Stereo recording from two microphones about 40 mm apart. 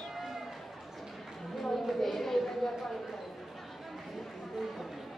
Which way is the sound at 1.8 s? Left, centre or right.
Centre.